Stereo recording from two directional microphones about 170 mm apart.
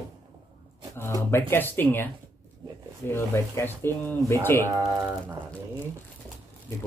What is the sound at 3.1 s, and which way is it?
Speech, 15° left (ahead or behind).